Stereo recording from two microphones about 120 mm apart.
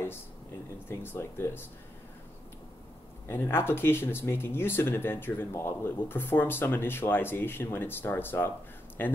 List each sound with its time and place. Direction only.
0.8 s speech: 20° left (ahead or behind)
3.3 s speech: 20° left (ahead or behind)